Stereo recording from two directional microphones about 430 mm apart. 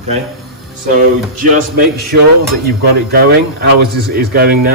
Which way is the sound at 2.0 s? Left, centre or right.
Right.